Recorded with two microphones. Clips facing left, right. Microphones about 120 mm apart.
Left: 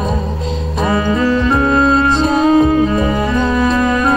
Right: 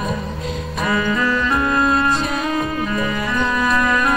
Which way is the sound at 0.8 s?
30° left (ahead or behind).